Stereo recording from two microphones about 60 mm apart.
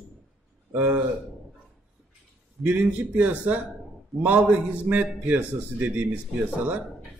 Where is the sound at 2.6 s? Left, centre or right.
Right.